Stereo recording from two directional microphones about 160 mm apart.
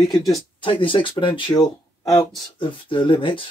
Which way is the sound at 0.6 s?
30° left (ahead or behind).